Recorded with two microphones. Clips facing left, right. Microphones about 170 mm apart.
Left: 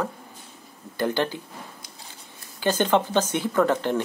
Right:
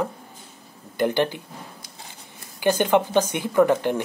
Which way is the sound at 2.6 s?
15° right (ahead or behind).